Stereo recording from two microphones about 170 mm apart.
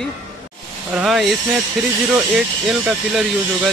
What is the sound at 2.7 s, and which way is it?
Speech, 5° right (ahead or behind).